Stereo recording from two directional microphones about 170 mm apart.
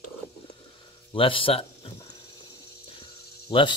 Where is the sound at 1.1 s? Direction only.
30° left (ahead or behind).